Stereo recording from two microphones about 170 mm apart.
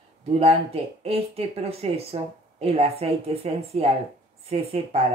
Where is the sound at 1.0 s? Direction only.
35° right (ahead or behind).